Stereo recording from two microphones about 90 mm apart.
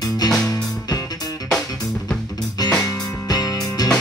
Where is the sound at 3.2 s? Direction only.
45° left (ahead or behind).